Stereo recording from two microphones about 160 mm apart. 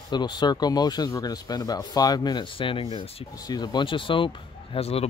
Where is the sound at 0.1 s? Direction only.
25° left (ahead or behind).